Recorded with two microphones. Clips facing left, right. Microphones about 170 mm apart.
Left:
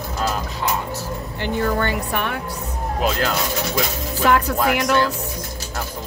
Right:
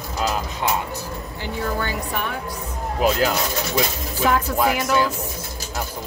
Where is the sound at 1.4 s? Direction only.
65° left (ahead or behind).